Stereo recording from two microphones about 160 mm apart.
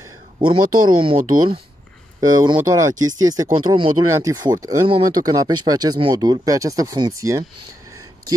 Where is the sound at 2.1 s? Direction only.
25° right (ahead or behind).